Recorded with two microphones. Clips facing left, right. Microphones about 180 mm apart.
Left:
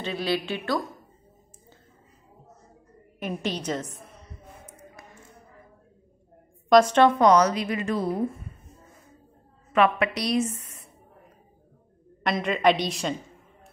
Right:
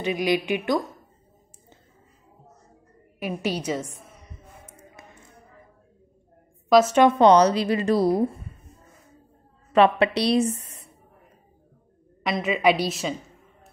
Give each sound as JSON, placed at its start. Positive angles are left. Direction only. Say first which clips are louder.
{"t": 0.0, "sound": "speech", "louder": "right 4 dB", "side_deg": -15}
{"t": 3.2, "sound": "speech", "louder": "right 2 dB", "side_deg": -5}
{"t": 6.7, "sound": "a woman's voice", "louder": "right 1 dB", "side_deg": -5}
{"t": 7.1, "sound": "a woman's voice", "louder": "right 3 dB", "side_deg": -30}
{"t": 9.7, "sound": "a woman's voice", "louder": "right 4 dB", "side_deg": -30}
{"t": 12.2, "sound": "a woman's voice", "louder": "right 1 dB", "side_deg": 0}